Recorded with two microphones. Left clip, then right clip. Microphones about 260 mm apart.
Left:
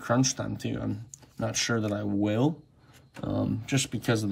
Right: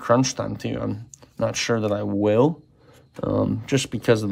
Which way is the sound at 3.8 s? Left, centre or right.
Centre.